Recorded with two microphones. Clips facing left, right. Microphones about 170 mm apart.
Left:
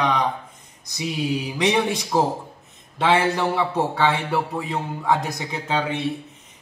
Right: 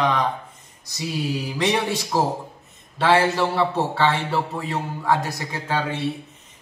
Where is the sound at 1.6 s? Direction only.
15° left (ahead or behind).